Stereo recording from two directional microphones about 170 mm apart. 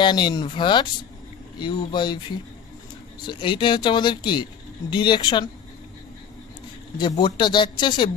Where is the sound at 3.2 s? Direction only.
30° left (ahead or behind).